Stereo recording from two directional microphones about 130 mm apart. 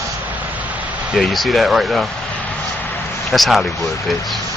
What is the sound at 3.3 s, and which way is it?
Speech, centre (ahead or behind).